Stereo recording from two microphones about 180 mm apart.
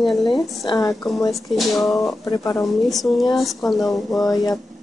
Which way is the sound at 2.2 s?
20° left (ahead or behind).